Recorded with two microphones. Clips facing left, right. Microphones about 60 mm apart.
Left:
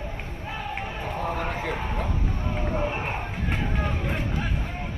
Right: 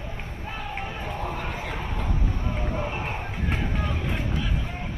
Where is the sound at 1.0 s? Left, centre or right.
Left.